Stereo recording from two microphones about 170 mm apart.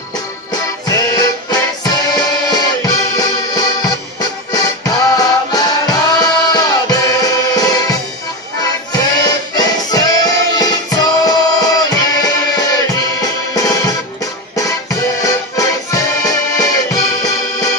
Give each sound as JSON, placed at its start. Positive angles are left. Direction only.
{"t": 0.5, "sound": "music", "side_deg": 20}